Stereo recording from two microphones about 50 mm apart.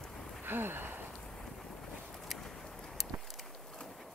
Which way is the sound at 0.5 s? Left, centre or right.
Right.